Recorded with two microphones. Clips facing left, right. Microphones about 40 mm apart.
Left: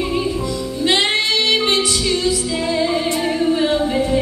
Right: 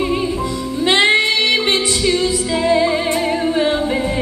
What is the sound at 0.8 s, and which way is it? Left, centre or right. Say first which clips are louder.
Music: right 4 dB; right.